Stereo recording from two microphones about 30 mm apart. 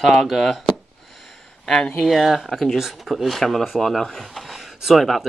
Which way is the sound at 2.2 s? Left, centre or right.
Centre.